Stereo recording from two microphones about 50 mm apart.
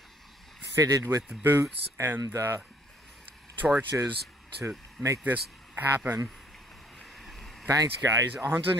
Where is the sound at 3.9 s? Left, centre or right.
Right.